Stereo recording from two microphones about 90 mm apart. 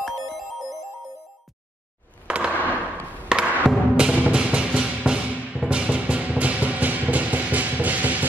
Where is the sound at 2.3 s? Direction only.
15° right (ahead or behind).